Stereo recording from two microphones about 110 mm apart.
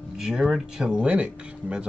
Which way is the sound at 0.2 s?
5° right (ahead or behind).